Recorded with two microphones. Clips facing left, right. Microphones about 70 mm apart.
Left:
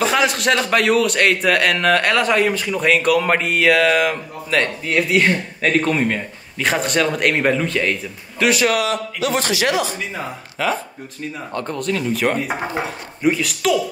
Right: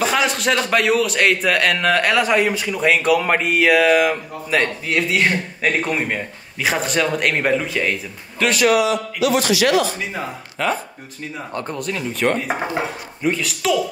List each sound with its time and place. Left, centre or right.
0.0 s a man's voice: centre
8.7 s speech: left
9.9 s a man's voice: centre